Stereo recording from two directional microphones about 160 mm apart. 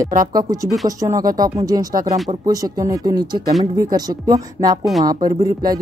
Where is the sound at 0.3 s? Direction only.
25° right (ahead or behind).